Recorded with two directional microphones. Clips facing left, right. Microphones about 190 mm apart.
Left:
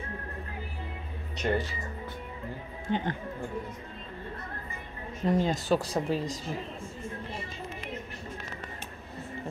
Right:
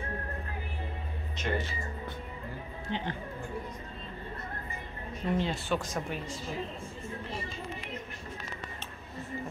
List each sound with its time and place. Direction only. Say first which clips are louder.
1.4 s speech: left 4 dB; 35° left (ahead or behind)
2.9 s speech: left 5 dB; 50° left (ahead or behind)
5.2 s speech: left 4 dB; 40° left (ahead or behind)